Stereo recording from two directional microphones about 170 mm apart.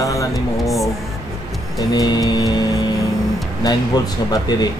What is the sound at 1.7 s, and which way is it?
Speech, 20° left (ahead or behind).